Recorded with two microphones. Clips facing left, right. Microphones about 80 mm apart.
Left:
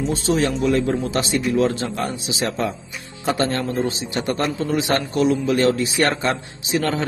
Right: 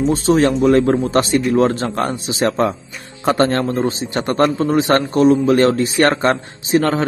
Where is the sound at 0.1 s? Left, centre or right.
Right.